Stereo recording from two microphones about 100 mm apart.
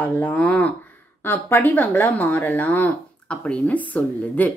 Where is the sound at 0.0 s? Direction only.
20° left (ahead or behind).